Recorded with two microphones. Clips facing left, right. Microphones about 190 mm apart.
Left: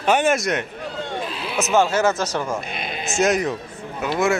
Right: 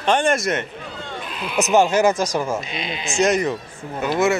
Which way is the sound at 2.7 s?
55° left (ahead or behind).